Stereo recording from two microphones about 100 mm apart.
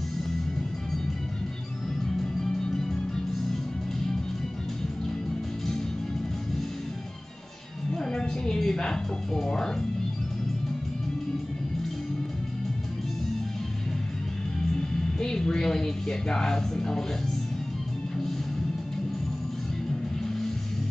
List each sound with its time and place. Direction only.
2.7 s music: 5° left (ahead or behind)
7.9 s music: 5° left (ahead or behind)
15.1 s speech: 5° left (ahead or behind)